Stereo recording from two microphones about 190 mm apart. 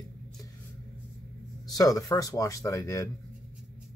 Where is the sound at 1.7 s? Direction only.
20° left (ahead or behind).